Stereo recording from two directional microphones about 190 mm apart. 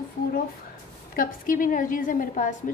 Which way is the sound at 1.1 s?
45° left (ahead or behind).